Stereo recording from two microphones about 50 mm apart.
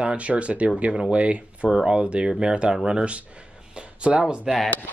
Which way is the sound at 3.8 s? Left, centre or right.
Right.